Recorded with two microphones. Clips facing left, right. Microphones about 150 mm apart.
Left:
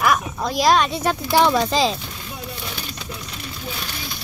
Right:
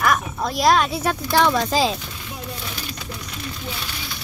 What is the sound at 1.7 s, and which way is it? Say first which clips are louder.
Speech: even; 5° right (ahead or behind).